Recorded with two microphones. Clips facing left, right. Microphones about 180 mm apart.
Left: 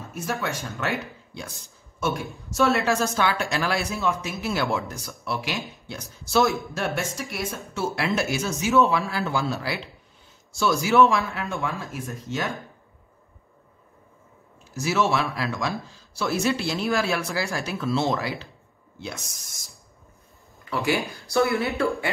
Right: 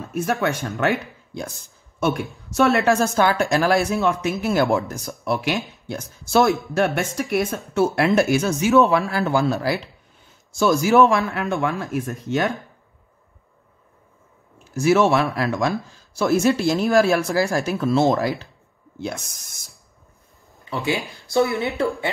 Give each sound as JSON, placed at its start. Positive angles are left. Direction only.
{"t": 0.1, "sound": "speech", "side_deg": -55}
{"t": 2.5, "sound": "speech", "side_deg": -60}
{"t": 14.8, "sound": "speech", "side_deg": -50}
{"t": 20.7, "sound": "speech", "side_deg": -20}